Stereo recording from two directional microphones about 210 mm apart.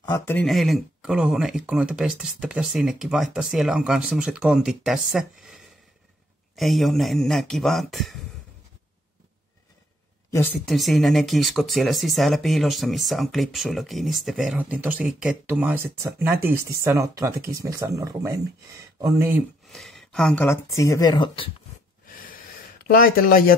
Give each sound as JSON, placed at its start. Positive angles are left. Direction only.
{"t": 0.0, "sound": "speech", "side_deg": 15}
{"t": 10.3, "sound": "speech", "side_deg": 5}
{"t": 19.7, "sound": "speech", "side_deg": 0}
{"t": 22.8, "sound": "speech", "side_deg": 45}